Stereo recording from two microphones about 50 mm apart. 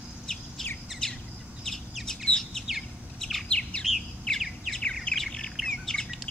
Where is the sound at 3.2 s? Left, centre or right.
Centre.